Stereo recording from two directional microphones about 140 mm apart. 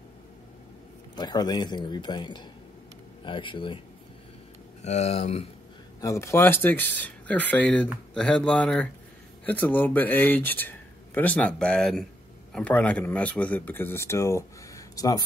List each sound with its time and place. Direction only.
1.1 s a man's voice: 30° left (ahead or behind)
4.8 s speech: 50° left (ahead or behind)
5.9 s speech: 20° left (ahead or behind)